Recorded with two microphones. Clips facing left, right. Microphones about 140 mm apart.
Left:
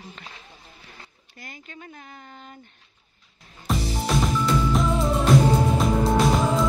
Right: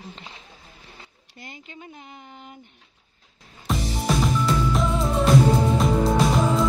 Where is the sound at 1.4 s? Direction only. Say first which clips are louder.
Right 1 dB; 20° right (ahead or behind).